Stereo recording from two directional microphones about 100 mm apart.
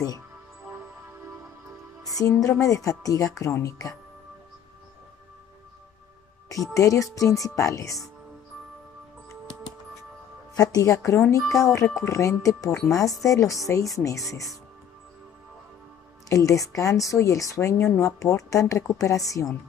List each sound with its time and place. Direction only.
2.0 s a woman's voice: 35° left (ahead or behind)
6.5 s a woman's voice: 35° left (ahead or behind)
10.5 s a woman's voice: 35° left (ahead or behind)
16.3 s a woman's voice: 35° left (ahead or behind)